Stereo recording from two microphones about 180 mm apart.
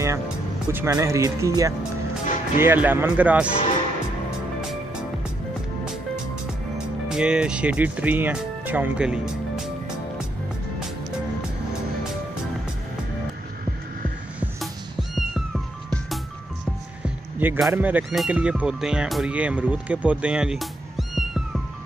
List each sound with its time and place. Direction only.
0.7 s speech: 10° right (ahead or behind)
2.2 s music: 45° left (ahead or behind)
2.6 s speech: 10° right (ahead or behind)
7.1 s speech: 5° right (ahead or behind)
14.4 s cat: centre (ahead or behind)
17.0 s speech: 10° right (ahead or behind)